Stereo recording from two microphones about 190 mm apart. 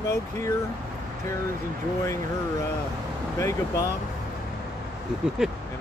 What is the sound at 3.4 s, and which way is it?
Speech, 15° left (ahead or behind).